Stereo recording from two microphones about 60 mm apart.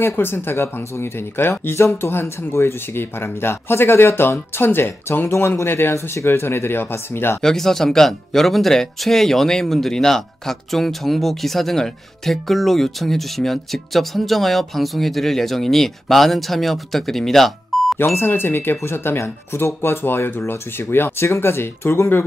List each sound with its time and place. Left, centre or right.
0.1 s speech: left
7.4 s speech: centre
18.0 s speech: left